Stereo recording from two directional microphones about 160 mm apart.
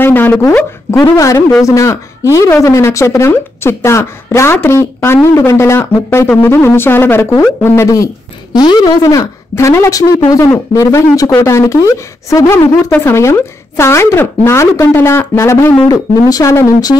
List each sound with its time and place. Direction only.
0.0 s a woman's voice: 10° left (ahead or behind)